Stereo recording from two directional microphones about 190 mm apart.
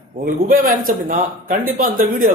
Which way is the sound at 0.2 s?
50° right (ahead or behind).